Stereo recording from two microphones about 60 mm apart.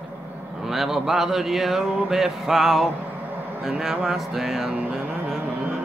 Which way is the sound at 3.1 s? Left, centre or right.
Right.